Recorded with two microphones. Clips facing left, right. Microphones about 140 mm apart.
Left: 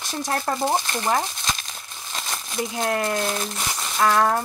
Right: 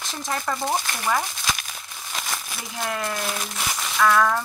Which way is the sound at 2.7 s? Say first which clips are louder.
Left 4 dB; 50° left (ahead or behind).